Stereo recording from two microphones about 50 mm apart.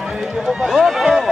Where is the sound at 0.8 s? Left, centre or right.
Centre.